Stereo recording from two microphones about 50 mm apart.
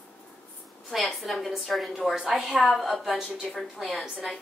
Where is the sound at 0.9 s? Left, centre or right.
Centre.